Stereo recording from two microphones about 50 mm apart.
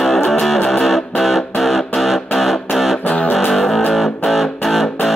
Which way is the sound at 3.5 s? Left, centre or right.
Centre.